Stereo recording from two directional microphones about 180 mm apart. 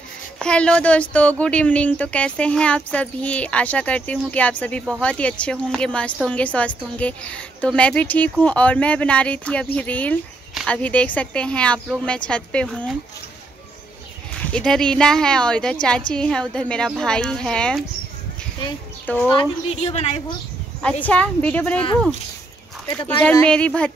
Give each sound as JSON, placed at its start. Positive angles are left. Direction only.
{"t": 0.4, "sound": "a woman's voice", "side_deg": 5}
{"t": 14.4, "sound": "speech", "side_deg": 5}
{"t": 19.0, "sound": "a woman's voice", "side_deg": 10}
{"t": 19.3, "sound": "a woman's voice", "side_deg": 30}
{"t": 21.0, "sound": "a woman's voice", "side_deg": 10}
{"t": 22.8, "sound": "a woman's voice", "side_deg": 10}